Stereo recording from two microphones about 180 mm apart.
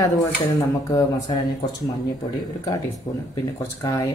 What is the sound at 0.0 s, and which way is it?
Speech, 15° left (ahead or behind).